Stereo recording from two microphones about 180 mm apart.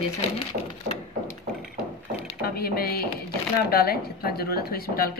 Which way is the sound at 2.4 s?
55° left (ahead or behind).